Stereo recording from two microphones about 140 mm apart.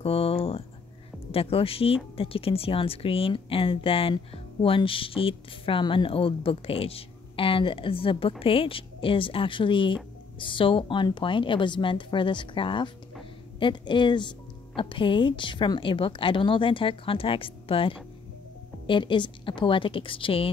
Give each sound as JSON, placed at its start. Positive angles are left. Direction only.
{"t": 0.0, "sound": "speech", "side_deg": 45}